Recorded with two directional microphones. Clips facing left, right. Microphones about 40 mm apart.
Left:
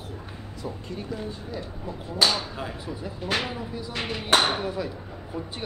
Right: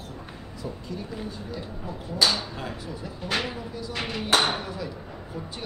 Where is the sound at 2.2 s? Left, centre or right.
Centre.